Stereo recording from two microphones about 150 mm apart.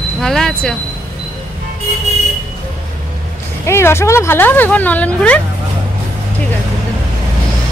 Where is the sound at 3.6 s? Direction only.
15° left (ahead or behind).